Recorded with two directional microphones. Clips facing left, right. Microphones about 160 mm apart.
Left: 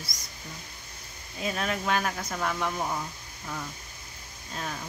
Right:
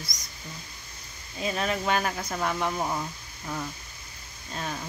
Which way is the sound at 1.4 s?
Centre (ahead or behind).